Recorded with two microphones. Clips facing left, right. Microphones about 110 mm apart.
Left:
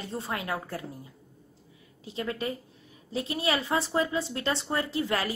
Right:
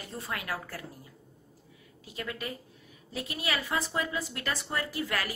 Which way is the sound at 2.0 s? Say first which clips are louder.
Left 6 dB; 25° left (ahead or behind).